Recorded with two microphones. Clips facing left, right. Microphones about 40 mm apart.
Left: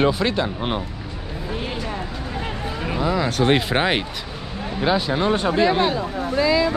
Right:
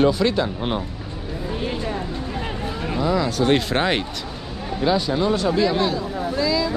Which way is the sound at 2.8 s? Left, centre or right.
Centre.